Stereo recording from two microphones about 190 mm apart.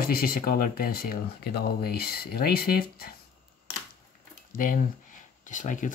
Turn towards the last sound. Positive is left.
turn(degrees=40)  # may be behind; listen again after turning